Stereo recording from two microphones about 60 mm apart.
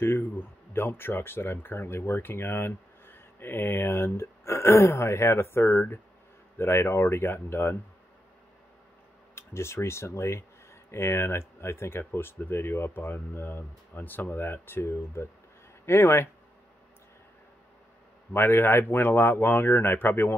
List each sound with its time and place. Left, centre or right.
0.0 s speech: left
9.3 s speech: left
18.3 s speech: left